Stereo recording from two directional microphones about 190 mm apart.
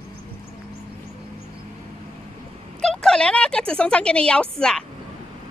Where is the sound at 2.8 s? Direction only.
5° left (ahead or behind).